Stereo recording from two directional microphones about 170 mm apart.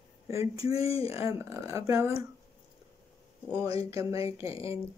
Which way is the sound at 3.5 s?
20° right (ahead or behind).